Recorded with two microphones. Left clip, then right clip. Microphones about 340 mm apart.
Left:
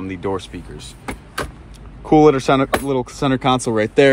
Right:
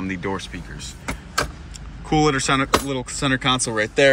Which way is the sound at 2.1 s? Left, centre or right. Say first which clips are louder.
Left 7 dB; centre.